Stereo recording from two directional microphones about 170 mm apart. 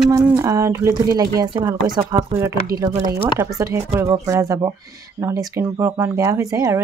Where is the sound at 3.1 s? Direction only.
15° right (ahead or behind).